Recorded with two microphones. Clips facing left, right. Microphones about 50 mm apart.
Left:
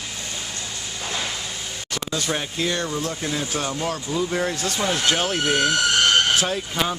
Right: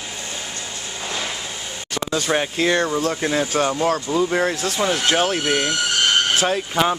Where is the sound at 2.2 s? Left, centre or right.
Right.